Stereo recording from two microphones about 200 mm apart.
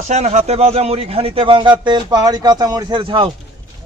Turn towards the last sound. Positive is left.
turn(degrees=-25)  # may be behind; listen again after turning